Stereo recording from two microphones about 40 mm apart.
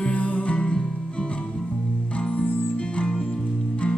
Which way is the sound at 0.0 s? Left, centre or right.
Left.